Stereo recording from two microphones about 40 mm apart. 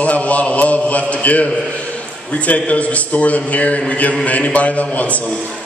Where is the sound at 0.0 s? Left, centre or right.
Left.